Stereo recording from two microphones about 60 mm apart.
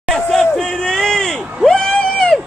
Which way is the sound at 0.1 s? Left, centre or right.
Centre.